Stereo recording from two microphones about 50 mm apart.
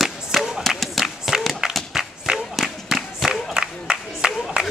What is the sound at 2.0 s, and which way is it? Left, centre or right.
Clapping, centre.